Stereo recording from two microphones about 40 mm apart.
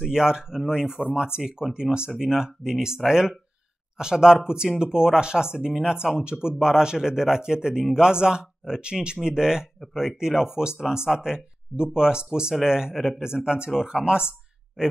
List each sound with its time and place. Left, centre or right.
0.1 s speech: centre